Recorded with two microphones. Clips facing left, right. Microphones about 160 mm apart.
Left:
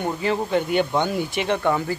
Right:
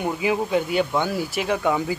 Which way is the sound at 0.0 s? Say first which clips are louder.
Right 1 dB; 5° right (ahead or behind).